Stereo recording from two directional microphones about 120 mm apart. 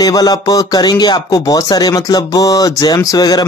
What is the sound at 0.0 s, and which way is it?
Speech, 35° left (ahead or behind).